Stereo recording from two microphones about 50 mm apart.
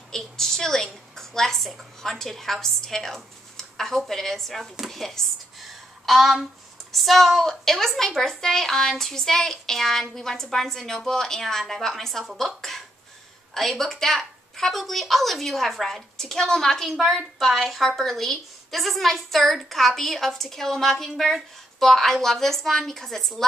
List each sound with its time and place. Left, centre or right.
0.1 s a woman's voice: centre
16.9 s a woman's voice: centre